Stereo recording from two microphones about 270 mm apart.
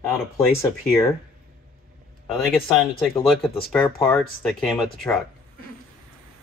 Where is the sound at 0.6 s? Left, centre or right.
Centre.